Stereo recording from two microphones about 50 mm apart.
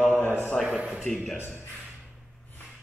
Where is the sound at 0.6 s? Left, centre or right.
Centre.